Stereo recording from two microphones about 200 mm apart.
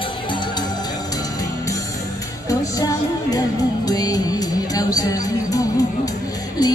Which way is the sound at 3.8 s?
20° left (ahead or behind).